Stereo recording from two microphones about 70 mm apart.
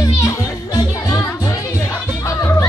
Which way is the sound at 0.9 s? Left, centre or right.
Left.